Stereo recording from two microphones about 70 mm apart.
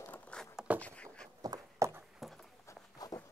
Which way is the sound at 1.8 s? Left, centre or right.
Right.